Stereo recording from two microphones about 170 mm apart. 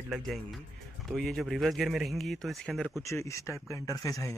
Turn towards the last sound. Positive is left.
turn(degrees=20)  # may be behind; listen again after turning